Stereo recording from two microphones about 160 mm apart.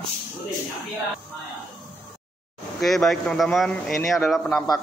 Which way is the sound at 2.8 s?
Centre (ahead or behind).